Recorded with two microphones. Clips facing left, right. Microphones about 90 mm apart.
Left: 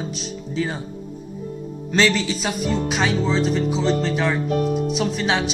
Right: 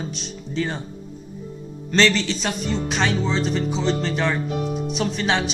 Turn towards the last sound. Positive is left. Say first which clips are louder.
# left 1 dB
turn(degrees=0)  # may be behind; listen again after turning